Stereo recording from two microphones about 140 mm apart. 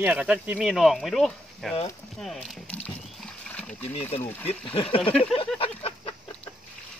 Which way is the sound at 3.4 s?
10° left (ahead or behind).